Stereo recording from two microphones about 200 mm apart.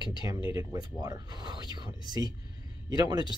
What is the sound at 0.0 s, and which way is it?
Speech, 20° right (ahead or behind).